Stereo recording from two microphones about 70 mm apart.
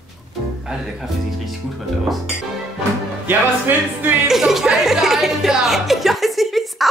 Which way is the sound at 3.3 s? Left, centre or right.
Right.